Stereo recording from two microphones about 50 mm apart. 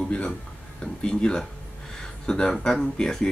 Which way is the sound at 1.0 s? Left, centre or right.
Centre.